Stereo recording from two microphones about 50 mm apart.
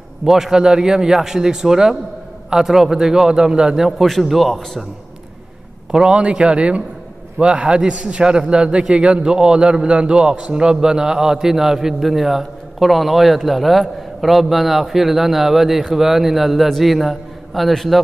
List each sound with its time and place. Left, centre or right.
0.2 s a man's voice: centre
4.0 s a man's voice: centre
5.9 s a man's voice: centre